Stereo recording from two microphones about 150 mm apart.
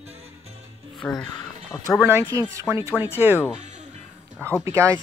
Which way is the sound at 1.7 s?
15° left (ahead or behind).